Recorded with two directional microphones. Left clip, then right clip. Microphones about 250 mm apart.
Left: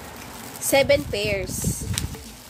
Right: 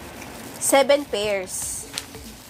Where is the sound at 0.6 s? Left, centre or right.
Centre.